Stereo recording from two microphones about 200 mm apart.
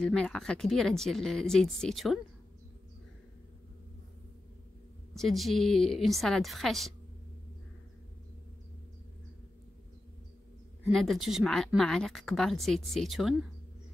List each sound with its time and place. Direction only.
0.0 s speech: 5° left (ahead or behind)
5.1 s speech: centre (ahead or behind)
10.9 s speech: centre (ahead or behind)